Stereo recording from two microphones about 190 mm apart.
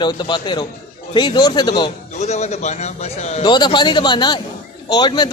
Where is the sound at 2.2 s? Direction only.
35° left (ahead or behind).